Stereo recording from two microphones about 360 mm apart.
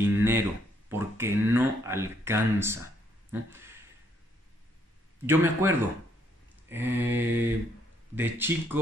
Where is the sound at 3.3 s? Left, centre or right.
Centre.